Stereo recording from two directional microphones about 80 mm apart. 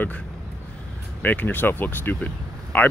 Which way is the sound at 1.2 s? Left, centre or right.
Left.